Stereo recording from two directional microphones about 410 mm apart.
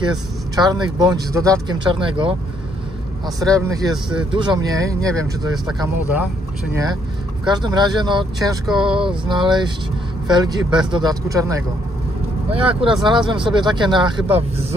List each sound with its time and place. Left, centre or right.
0.0 s speech: centre
3.3 s speech: centre
7.4 s speech: centre
12.6 s speech: centre